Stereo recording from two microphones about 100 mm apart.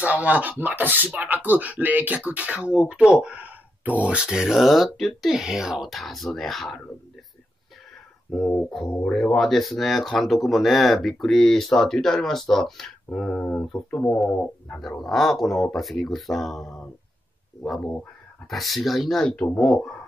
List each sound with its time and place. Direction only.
0.0 s speech: 15° right (ahead or behind); by 6.8 s centre (ahead or behind)
8.6 s speech: 5° left (ahead or behind)
14.2 s speech: centre (ahead or behind)